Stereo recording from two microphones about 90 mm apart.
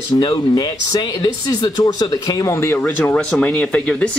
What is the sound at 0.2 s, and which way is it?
Speech, 50° left (ahead or behind).